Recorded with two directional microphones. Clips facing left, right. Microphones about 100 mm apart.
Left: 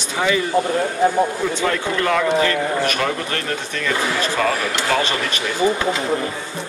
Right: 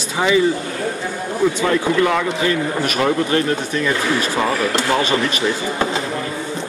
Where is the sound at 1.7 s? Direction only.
15° right (ahead or behind).